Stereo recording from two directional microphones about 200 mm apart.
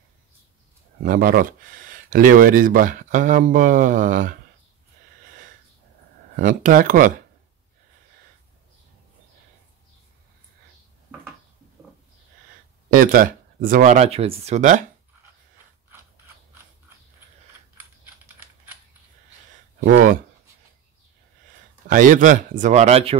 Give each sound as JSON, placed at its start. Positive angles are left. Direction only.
{"t": 1.0, "sound": "speech", "side_deg": -45}
{"t": 6.3, "sound": "speech", "side_deg": -40}
{"t": 12.9, "sound": "speech", "side_deg": -45}
{"t": 17.8, "sound": "typing", "side_deg": -10}
{"t": 19.8, "sound": "speech", "side_deg": -40}
{"t": 21.8, "sound": "speech", "side_deg": -40}